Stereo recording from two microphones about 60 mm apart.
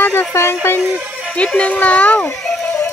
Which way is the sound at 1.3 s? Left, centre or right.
Left.